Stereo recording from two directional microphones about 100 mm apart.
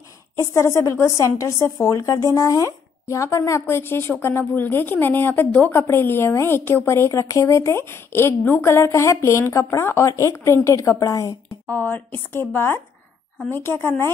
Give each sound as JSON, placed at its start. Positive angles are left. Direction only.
{"t": 0.4, "sound": "speech", "side_deg": 25}
{"t": 11.7, "sound": "speech", "side_deg": 20}